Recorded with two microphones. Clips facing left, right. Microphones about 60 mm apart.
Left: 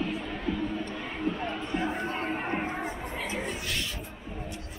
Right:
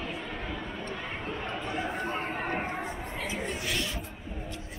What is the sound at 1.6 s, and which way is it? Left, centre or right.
Music, centre.